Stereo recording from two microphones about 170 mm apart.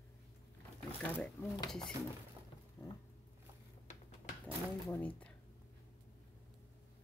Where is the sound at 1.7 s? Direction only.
5° left (ahead or behind).